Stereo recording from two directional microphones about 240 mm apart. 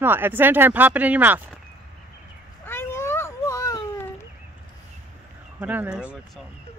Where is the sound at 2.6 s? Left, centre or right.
Centre.